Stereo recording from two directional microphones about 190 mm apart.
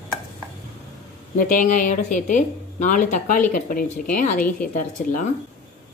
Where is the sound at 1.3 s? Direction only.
45° left (ahead or behind).